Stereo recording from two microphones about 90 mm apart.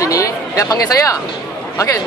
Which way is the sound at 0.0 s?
35° left (ahead or behind).